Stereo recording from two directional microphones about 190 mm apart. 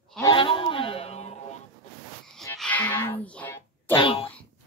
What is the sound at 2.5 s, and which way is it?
Music, 10° left (ahead or behind).